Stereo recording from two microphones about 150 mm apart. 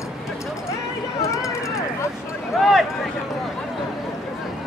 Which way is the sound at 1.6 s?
20° left (ahead or behind).